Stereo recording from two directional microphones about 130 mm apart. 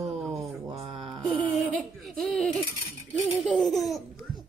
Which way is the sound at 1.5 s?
Centre (ahead or behind).